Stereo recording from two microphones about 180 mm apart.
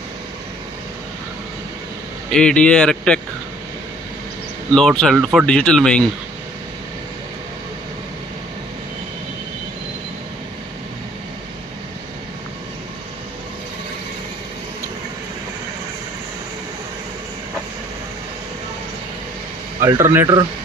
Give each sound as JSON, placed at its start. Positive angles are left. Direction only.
{"t": 2.3, "sound": "speech", "side_deg": 5}
{"t": 4.7, "sound": "speech", "side_deg": 5}
{"t": 19.8, "sound": "a man's voice", "side_deg": -15}